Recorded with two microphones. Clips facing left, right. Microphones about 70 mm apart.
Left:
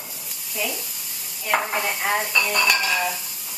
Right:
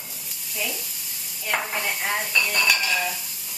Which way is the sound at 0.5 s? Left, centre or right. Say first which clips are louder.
Left 3 dB; centre.